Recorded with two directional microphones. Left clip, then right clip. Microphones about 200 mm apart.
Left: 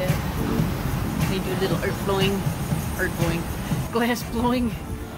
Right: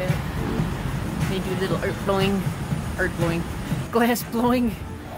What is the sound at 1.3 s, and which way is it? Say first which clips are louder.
Speech: even; 50° right (ahead or behind).